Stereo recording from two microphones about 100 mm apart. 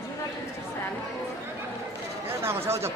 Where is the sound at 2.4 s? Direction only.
25° right (ahead or behind).